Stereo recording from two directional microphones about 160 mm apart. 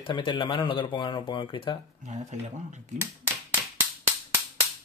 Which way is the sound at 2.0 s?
50° right (ahead or behind).